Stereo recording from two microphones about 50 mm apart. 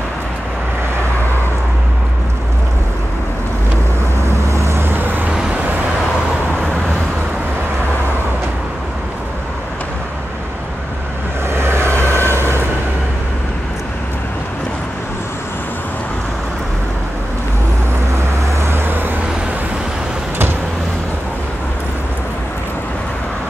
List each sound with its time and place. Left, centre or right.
4.3 s vehicle: right
11.5 s vehicle: right
12.0 s vehicle: left
12.4 s vehicle: right
18.6 s vehicle: right